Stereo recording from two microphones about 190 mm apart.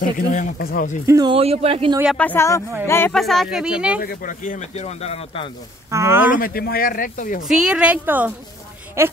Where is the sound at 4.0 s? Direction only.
50° left (ahead or behind); by 5.5 s 30° left (ahead or behind).